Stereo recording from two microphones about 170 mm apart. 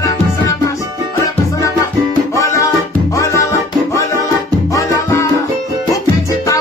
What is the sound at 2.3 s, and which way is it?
Music, 20° left (ahead or behind).